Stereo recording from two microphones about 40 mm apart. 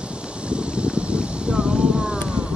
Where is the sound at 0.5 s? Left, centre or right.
Right.